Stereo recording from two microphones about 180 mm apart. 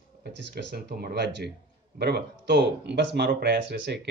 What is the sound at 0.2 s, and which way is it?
Speech, 65° right (ahead or behind).